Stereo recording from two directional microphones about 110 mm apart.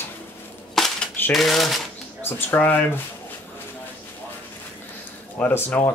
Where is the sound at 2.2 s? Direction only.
20° left (ahead or behind).